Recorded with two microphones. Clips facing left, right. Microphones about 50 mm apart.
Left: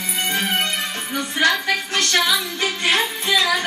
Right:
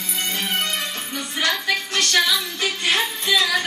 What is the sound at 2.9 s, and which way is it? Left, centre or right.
Music, left.